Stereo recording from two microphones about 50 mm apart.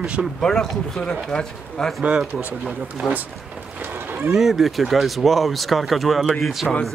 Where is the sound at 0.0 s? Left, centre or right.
Centre.